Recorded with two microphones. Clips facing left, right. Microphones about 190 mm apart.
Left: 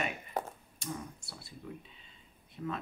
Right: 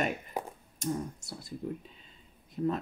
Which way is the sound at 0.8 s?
45° right (ahead or behind).